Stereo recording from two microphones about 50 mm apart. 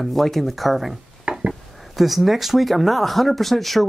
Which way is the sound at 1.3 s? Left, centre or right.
Right.